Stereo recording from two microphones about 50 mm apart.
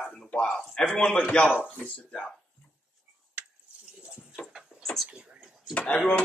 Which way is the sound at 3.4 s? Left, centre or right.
Right.